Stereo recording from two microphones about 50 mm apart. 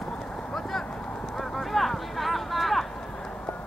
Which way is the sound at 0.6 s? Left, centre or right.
Centre.